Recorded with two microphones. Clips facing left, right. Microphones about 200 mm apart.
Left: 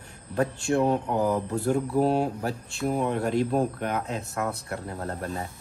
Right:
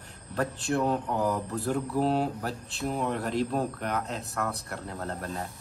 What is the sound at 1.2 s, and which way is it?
Speech, 20° left (ahead or behind).